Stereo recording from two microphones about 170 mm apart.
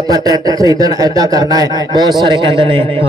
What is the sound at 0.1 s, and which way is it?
A man's voice, 20° right (ahead or behind).